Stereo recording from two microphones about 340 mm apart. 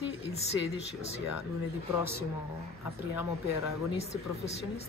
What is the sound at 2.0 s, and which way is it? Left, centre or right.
Speech, centre.